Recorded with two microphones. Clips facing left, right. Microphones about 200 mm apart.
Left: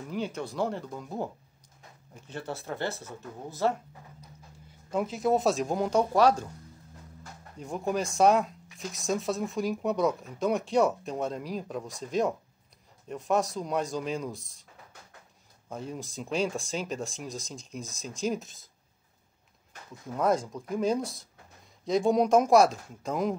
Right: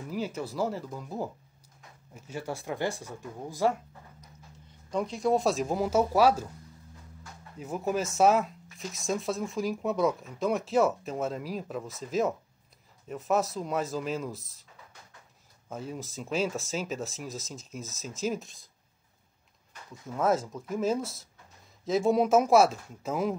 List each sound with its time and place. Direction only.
0.1 s speech: 5° right (ahead or behind)
4.9 s speech: 5° left (ahead or behind)
7.5 s speech: 5° right (ahead or behind)
15.7 s speech: 5° right (ahead or behind)
20.2 s speech: 5° right (ahead or behind)